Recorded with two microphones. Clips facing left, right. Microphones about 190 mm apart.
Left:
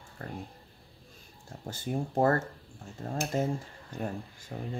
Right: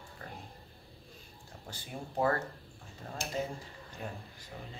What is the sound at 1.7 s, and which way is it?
Speech, 45° left (ahead or behind).